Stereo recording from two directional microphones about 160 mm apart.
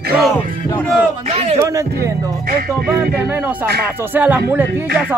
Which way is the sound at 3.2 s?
15° right (ahead or behind).